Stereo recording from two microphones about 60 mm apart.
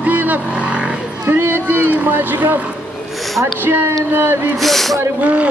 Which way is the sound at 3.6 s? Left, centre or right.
Right.